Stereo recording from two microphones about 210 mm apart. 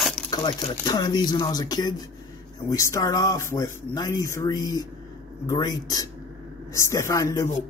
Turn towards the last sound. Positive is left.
turn(degrees=15)  # may be behind; listen again after turning